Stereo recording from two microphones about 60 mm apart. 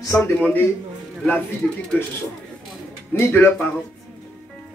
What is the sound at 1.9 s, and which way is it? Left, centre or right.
A man's voice, left.